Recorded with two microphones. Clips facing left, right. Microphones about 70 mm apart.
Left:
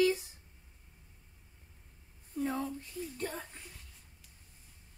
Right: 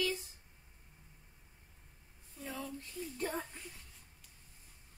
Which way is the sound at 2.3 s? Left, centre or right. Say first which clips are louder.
Left 9 dB; left.